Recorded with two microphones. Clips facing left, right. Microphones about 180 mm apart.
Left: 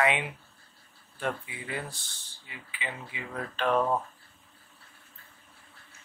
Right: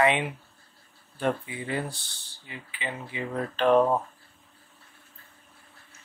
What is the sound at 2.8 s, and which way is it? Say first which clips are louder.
Speech: right 5 dB; 35° right (ahead or behind).